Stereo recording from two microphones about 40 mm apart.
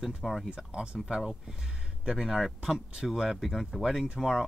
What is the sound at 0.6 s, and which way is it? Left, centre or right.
Speech, centre.